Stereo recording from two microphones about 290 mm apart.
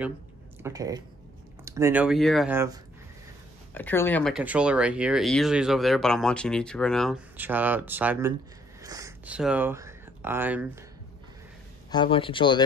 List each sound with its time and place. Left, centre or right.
0.6 s speech: centre
3.7 s speech: centre
11.9 s speech: centre